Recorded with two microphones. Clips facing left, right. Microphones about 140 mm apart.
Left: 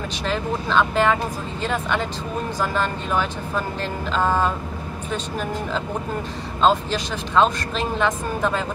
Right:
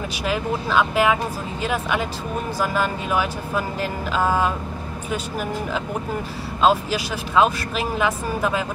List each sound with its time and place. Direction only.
0.2 s speech: 10° right (ahead or behind)